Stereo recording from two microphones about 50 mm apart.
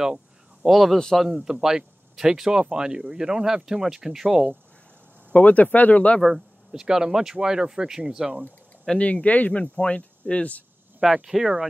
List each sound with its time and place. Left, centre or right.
0.0 s a sound: centre
0.7 s speech: centre
1.4 s speech: centre
5.3 s speech: left
6.2 s speech: centre
8.9 s speech: left
11.0 s speech: centre
11.2 s speech: centre